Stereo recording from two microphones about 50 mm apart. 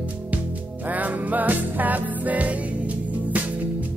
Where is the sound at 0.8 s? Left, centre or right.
Right.